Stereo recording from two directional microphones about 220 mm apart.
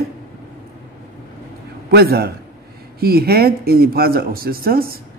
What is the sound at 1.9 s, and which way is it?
Speech, 45° right (ahead or behind).